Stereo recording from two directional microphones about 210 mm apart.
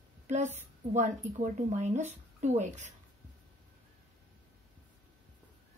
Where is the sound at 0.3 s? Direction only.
35° right (ahead or behind).